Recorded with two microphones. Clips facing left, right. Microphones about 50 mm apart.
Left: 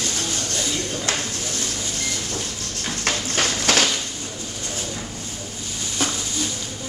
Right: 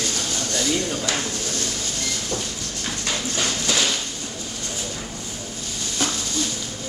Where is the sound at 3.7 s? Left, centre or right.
Left.